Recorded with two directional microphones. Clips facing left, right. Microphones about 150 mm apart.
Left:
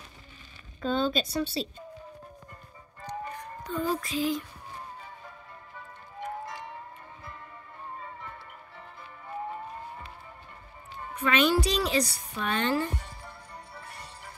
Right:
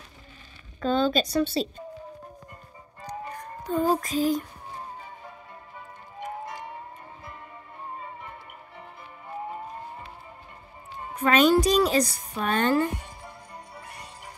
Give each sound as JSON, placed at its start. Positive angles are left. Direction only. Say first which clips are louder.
{"t": 1.1, "sound": "a woman's voice", "louder": "right 5 dB", "side_deg": -45}
{"t": 3.0, "sound": "music", "louder": "right 1 dB", "side_deg": -45}
{"t": 6.1, "sound": "music", "louder": "right 1 dB", "side_deg": -15}
{"t": 8.0, "sound": "music", "louder": "right 2 dB", "side_deg": -20}
{"t": 11.1, "sound": "a woman's voice", "louder": "right 5 dB", "side_deg": -40}
{"t": 12.9, "sound": "music", "louder": "right 2 dB", "side_deg": -15}